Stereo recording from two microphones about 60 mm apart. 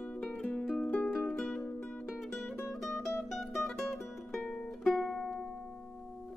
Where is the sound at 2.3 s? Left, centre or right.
Centre.